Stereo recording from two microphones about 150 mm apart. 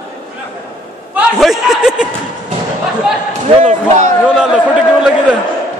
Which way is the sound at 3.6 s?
55° right (ahead or behind).